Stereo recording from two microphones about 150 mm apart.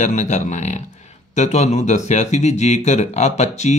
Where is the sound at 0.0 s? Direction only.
50° left (ahead or behind).